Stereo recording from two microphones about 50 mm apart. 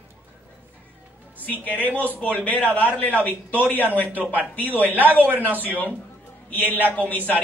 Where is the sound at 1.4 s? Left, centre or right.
Left.